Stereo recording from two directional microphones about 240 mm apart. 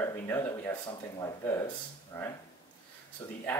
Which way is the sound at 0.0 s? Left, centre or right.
Centre.